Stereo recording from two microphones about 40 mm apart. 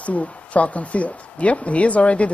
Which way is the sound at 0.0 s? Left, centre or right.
Left.